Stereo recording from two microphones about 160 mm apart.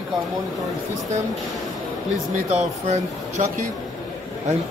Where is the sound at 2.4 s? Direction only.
45° right (ahead or behind).